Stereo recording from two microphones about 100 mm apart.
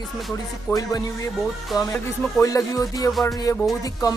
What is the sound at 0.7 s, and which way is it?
Music, 30° left (ahead or behind).